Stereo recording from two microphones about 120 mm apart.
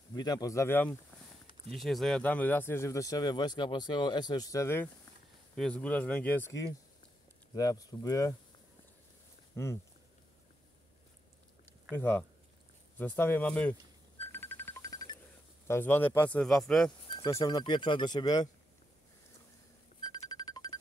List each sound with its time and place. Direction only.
0.1 s speech: 35° left (ahead or behind); by 0.9 s 20° left (ahead or behind)
1.7 s speech: centre (ahead or behind); by 4.8 s 25° left (ahead or behind)
5.6 s speech: 10° left (ahead or behind)
7.5 s speech: 30° left (ahead or behind)
9.6 s speech: 20° left (ahead or behind)
11.9 s speech: 15° left (ahead or behind)
14.2 s music: 20° left (ahead or behind)
15.6 s speech: 20° left (ahead or behind)
16.4 s speech: 5° left (ahead or behind)
17.3 s speech: 25° left (ahead or behind)
17.6 s speech: 40° left (ahead or behind)
20.0 s music: 35° left (ahead or behind)